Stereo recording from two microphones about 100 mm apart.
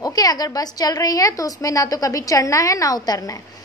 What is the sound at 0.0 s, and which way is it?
A woman's voice, 40° left (ahead or behind).